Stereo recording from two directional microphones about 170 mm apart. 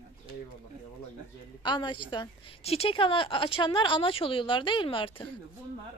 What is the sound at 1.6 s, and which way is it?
A woman's voice, 25° left (ahead or behind).